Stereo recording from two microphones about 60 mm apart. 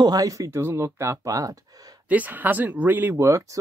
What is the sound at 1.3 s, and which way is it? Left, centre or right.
Speech, right.